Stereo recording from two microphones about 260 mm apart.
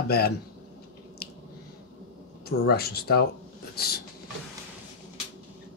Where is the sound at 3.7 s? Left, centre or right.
Left.